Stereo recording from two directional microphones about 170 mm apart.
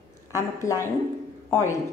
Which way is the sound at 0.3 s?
15° left (ahead or behind).